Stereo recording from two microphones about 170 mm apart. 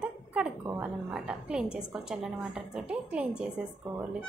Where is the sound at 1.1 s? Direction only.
5° right (ahead or behind).